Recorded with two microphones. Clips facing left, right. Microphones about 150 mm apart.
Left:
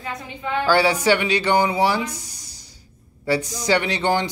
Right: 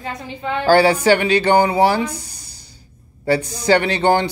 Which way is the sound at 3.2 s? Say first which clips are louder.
Right 4 dB; 60° right (ahead or behind).